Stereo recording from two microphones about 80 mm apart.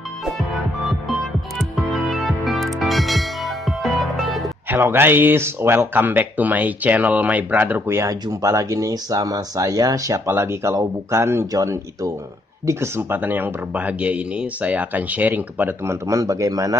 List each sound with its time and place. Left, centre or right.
1.6 s music: centre
4.6 s speech: right
7.9 s speech: right
12.6 s speech: right
15.8 s speech: right